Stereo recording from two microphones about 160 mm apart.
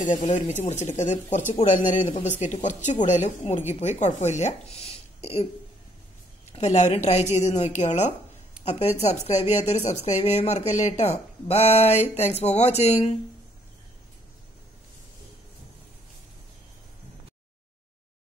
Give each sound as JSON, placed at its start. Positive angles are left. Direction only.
{"t": 0.0, "sound": "a woman's voice", "side_deg": 50}
{"t": 6.5, "sound": "a woman's voice", "side_deg": 45}